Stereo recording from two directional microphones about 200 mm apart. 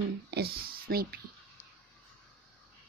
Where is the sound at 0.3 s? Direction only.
50° right (ahead or behind).